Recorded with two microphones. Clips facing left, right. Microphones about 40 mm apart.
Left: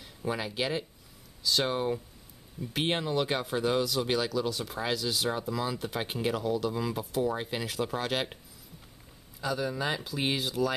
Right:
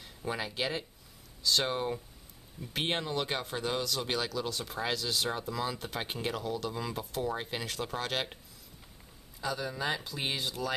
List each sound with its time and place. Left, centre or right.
0.0 s speech: centre
9.4 s speech: centre